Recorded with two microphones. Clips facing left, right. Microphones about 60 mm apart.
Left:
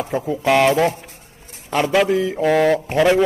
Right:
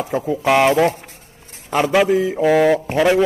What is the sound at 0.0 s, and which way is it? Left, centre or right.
A man's voice, centre.